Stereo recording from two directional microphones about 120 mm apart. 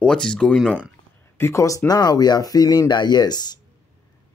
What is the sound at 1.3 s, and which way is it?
Speech, 20° left (ahead or behind).